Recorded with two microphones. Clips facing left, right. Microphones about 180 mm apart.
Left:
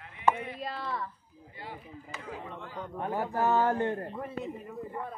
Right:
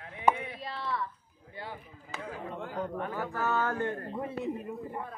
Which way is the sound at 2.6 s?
45° right (ahead or behind).